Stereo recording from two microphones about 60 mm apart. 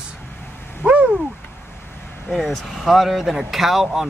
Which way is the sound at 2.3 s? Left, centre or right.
Centre.